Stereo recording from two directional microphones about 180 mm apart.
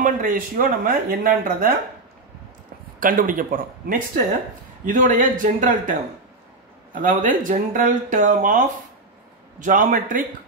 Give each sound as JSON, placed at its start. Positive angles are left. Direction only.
{"t": 0.0, "sound": "speech", "side_deg": -50}
{"t": 3.0, "sound": "speech", "side_deg": -50}